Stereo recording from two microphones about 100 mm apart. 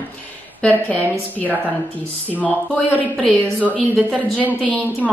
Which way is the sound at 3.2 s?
5° left (ahead or behind).